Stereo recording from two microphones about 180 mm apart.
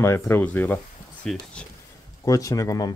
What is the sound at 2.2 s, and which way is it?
Speech, 20° left (ahead or behind).